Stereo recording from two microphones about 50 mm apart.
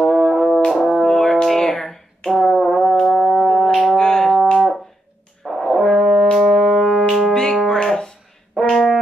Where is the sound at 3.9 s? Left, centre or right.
Centre.